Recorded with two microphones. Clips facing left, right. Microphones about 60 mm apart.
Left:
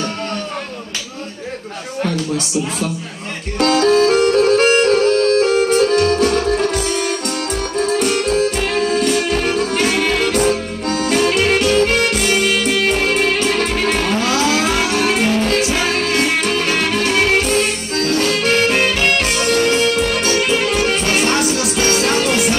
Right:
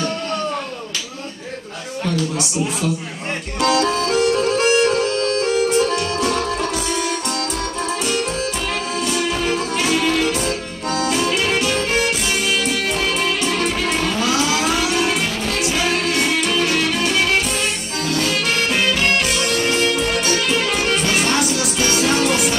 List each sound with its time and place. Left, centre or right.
3.6 s music: left
6.9 s music: left